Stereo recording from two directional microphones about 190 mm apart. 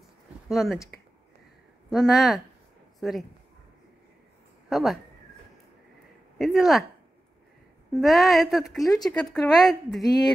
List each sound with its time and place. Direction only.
0.5 s speech: centre (ahead or behind)
1.9 s a woman's voice: centre (ahead or behind)
4.6 s speech: centre (ahead or behind)
6.3 s speech: centre (ahead or behind)
7.9 s a woman's voice: centre (ahead or behind)
8.8 s speech: 20° left (ahead or behind)
9.2 s a woman's voice: centre (ahead or behind)